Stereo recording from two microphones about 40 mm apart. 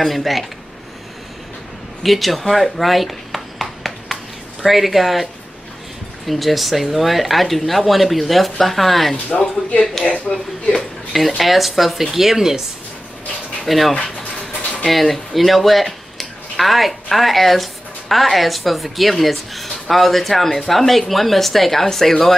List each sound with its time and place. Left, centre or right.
0.0 s speech: centre
2.0 s a sound: centre
4.6 s speech: centre
9.1 s speech: left
11.1 s speech: centre
13.7 s speech: centre